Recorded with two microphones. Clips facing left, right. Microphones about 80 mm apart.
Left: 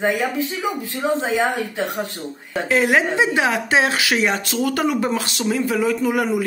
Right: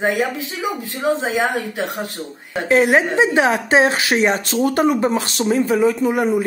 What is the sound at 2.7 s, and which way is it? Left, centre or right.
Speech, right.